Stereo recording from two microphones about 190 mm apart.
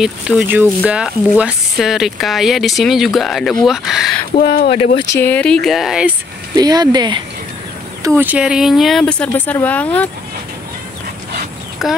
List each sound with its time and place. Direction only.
0.0 s speech: 5° right (ahead or behind)
4.4 s speech: 55° left (ahead or behind)
5.2 s speech: 5° left (ahead or behind)
6.5 s speech: 20° right (ahead or behind)
8.2 s speech: 5° right (ahead or behind); by 10.0 s 10° left (ahead or behind)
11.8 s speech: centre (ahead or behind)